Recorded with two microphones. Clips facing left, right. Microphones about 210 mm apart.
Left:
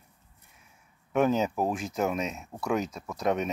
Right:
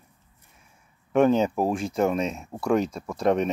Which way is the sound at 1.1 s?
5° left (ahead or behind).